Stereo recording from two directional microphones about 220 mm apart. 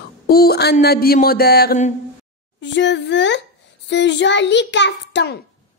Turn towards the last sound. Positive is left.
turn(degrees=50)  # may be behind; listen again after turning